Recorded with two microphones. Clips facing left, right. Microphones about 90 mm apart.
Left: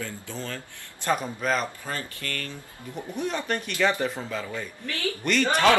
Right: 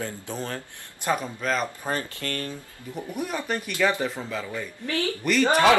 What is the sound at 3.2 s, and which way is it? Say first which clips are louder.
Speech: left 1 dB; 10° right (ahead or behind).